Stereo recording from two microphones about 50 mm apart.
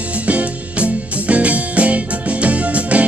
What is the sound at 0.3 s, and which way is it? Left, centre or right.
Music, right.